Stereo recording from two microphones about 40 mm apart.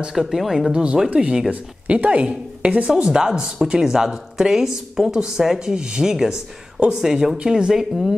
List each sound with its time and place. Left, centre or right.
0.1 s speech: centre
1.1 s speech: right
3.0 s speech: centre